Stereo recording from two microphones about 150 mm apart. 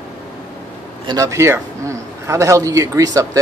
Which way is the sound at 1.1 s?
20° right (ahead or behind).